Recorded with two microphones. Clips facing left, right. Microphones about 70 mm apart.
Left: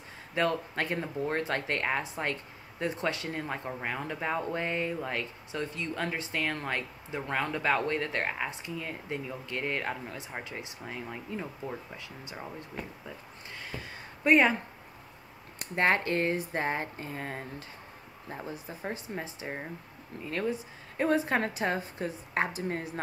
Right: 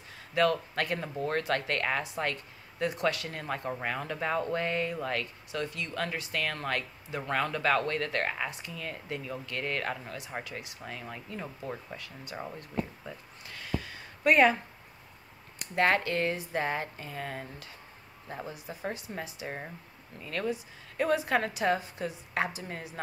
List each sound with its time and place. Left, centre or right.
0.3 s speech: left
13.5 s a sound: left
15.7 s speech: left
18.9 s a woman's voice: left